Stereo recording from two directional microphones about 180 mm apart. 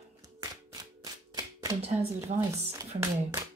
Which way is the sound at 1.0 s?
20° right (ahead or behind).